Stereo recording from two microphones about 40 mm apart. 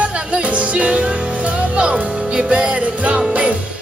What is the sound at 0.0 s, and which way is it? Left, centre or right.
Music, right.